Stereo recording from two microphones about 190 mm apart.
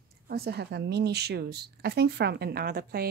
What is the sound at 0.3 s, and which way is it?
A woman's voice, 60° right (ahead or behind).